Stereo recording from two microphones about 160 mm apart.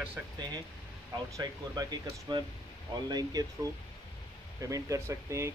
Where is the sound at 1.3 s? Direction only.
25° right (ahead or behind).